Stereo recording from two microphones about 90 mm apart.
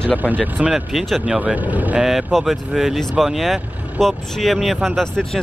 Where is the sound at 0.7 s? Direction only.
Centre (ahead or behind).